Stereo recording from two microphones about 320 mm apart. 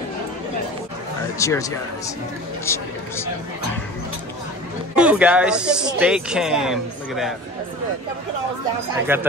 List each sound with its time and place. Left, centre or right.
1.4 s speech: centre
4.9 s a man's voice: centre
9.1 s speech: centre